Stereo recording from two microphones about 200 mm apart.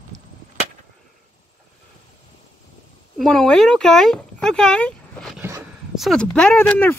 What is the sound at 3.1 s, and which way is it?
Speech, centre (ahead or behind).